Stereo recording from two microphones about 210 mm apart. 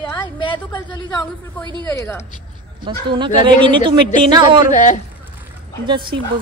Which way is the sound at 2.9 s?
25° right (ahead or behind).